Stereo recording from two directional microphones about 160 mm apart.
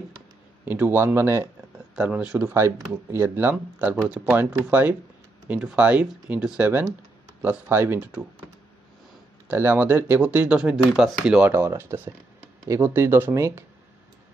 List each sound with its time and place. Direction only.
0.7 s speech: 10° right (ahead or behind)
9.5 s speech: 15° right (ahead or behind)